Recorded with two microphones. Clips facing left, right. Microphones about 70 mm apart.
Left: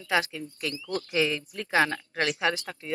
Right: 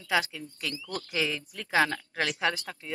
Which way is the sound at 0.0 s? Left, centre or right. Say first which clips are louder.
Left 1 dB; left.